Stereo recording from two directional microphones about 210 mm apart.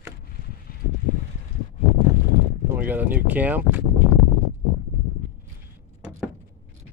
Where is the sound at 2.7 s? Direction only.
10° right (ahead or behind).